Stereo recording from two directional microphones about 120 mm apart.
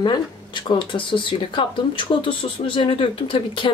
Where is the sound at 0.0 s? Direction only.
40° left (ahead or behind).